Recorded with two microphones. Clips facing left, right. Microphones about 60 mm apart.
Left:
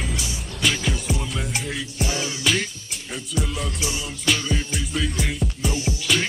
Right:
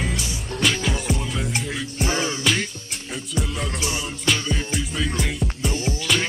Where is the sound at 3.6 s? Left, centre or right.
Right.